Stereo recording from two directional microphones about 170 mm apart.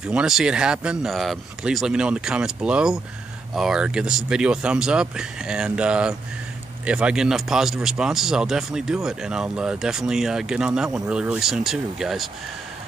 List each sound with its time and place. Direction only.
0.0 s speech: 5° right (ahead or behind)